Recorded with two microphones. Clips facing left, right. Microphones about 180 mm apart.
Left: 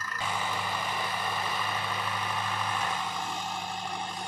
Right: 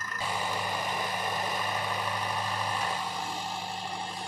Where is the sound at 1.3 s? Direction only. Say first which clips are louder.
Right 1 dB; 40° right (ahead or behind).